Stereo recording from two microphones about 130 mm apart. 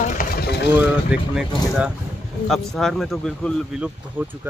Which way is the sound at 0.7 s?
5° right (ahead or behind).